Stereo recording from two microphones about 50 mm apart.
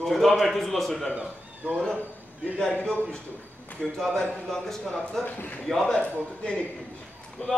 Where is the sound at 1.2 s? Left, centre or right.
Right.